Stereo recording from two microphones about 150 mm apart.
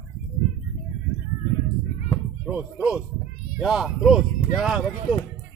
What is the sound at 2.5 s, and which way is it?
Speech, 5° right (ahead or behind).